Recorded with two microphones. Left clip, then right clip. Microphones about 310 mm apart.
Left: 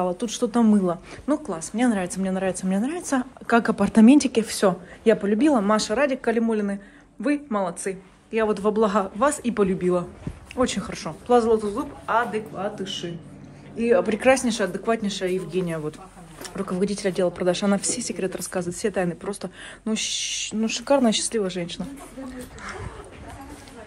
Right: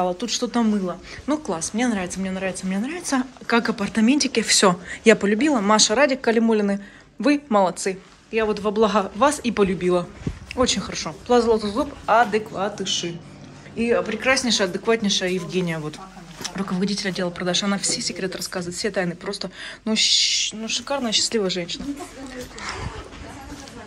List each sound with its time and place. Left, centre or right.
0.0 s speech: centre
13.7 s speech: centre
14.0 s a woman's voice: centre
14.3 s a woman's voice: centre
20.6 s a woman's voice: centre
21.3 s speech: centre
22.6 s speech: centre